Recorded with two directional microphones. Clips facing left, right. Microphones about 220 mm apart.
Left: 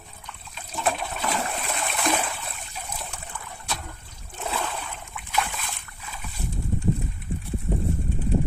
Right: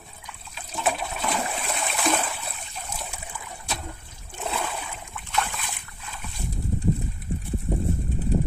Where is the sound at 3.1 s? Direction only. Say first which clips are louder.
Even; 10° right (ahead or behind).